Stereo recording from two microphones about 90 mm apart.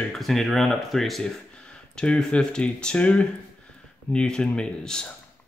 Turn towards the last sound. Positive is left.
turn(degrees=10)  # may be behind; listen again after turning